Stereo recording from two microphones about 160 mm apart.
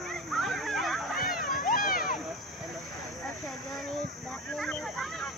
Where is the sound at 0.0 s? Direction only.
Centre (ahead or behind).